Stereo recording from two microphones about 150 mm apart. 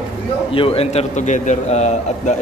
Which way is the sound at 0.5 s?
40° left (ahead or behind).